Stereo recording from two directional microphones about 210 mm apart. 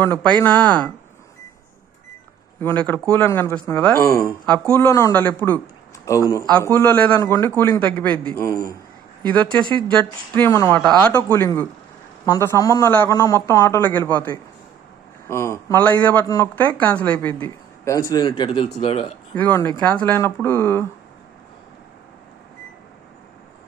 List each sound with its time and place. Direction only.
0.0 s speech: 10° left (ahead or behind)
2.6 s speech: 10° left (ahead or behind); by 19.1 s 30° left (ahead or behind)
19.3 s speech: 10° left (ahead or behind)